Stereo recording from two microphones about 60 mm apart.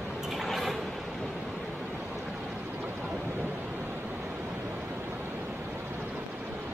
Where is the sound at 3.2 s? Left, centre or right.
Right.